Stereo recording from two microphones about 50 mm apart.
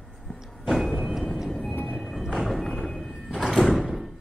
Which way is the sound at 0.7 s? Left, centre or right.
Centre.